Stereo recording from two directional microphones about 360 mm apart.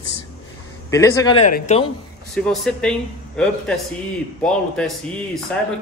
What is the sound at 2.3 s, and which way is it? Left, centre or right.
Speech, centre.